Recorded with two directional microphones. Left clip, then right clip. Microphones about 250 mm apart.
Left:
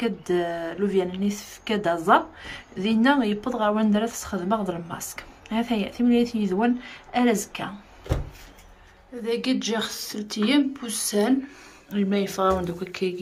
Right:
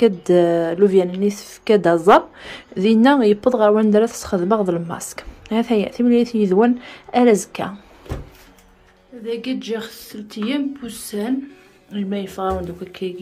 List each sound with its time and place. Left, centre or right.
0.0 s speech: right
9.2 s a woman's voice: centre